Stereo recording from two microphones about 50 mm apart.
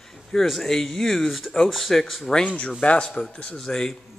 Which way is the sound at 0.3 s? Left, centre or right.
Centre.